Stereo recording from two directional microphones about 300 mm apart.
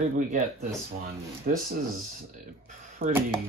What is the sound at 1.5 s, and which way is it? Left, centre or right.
Speech, right.